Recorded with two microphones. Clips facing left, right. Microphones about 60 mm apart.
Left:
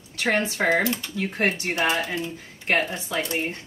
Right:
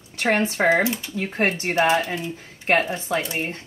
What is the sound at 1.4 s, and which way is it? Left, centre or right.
Speech, right.